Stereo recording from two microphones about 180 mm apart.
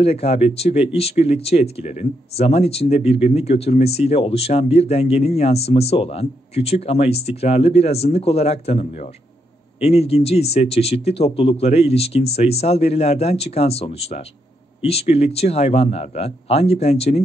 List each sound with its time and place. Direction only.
0.0 s speech: 35° left (ahead or behind)